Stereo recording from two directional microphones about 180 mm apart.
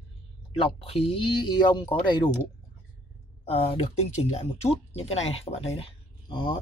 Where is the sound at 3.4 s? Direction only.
30° left (ahead or behind).